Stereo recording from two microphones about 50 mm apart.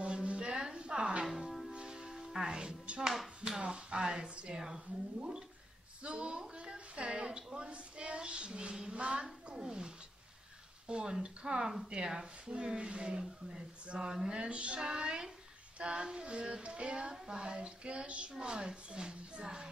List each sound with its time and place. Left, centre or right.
0.0 s music: right
1.2 s music: centre
1.7 s music: centre
3.4 s speech: centre
6.0 s a woman's voice: right
10.9 s a woman's voice: centre